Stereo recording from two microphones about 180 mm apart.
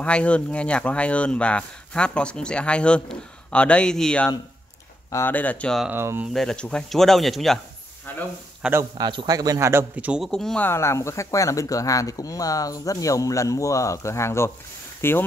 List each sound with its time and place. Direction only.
0.0 s a man's voice: 5° left (ahead or behind)
5.9 s speech: 10° right (ahead or behind)
6.3 s speech: 5° left (ahead or behind)
8.9 s a man's voice: 25° right (ahead or behind); by 15.2 s 10° left (ahead or behind)